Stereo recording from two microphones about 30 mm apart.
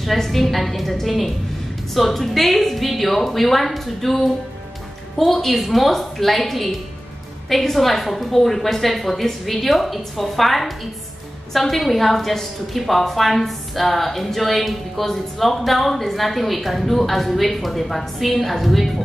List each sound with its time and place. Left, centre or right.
0.0 s speech: centre